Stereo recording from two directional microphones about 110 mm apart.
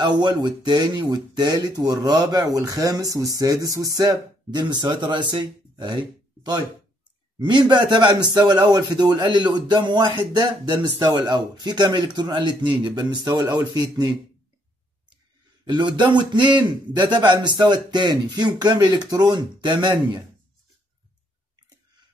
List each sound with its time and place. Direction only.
0.0 s speech: 40° right (ahead or behind)
15.6 s a man's voice: 45° right (ahead or behind)